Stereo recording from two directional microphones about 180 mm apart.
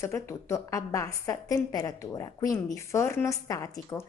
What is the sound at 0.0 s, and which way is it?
A woman's voice, 15° left (ahead or behind).